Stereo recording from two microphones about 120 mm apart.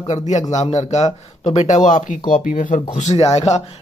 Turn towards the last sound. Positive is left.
turn(degrees=65)  # may be behind; listen again after turning